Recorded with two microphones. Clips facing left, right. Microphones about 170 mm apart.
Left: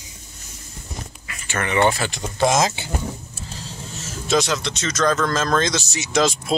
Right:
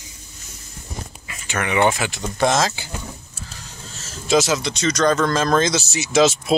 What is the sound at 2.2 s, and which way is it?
Speech, 10° left (ahead or behind).